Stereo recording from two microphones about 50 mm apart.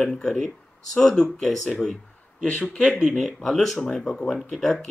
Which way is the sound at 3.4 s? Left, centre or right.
Centre.